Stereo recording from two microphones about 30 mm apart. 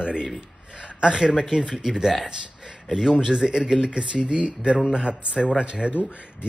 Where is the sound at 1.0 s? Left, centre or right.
Right.